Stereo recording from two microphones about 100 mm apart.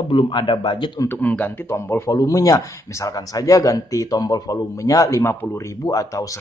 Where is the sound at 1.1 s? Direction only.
15° left (ahead or behind); by 6.3 s 35° left (ahead or behind).